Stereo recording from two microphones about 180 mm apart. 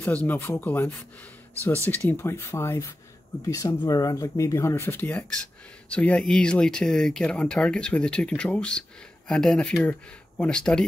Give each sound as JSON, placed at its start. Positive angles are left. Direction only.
{"t": 0.0, "sound": "speech", "side_deg": 10}